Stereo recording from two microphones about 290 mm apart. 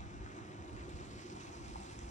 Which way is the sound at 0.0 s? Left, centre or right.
Left.